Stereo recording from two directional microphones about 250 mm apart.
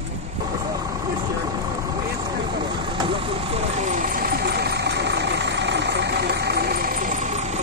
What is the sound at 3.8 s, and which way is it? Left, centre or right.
Vehicle, right.